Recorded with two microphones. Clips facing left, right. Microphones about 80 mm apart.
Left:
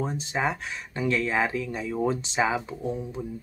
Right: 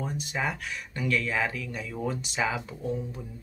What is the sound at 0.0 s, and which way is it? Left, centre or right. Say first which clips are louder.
Speech: left 4 dB; left.